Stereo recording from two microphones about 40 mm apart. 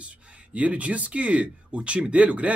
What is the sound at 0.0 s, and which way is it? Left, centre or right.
Speech, right.